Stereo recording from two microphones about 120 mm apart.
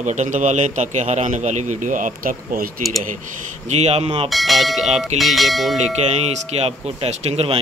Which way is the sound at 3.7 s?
65° right (ahead or behind).